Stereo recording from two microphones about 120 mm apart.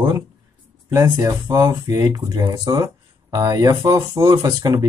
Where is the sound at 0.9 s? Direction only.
20° right (ahead or behind).